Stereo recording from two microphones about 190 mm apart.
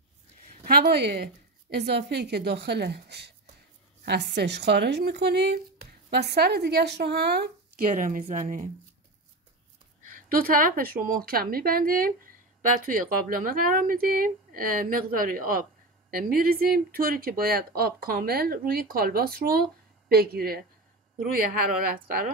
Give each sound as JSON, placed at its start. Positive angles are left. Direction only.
{"t": 0.7, "sound": "a woman's voice", "side_deg": -55}
{"t": 10.0, "sound": "speech", "side_deg": -50}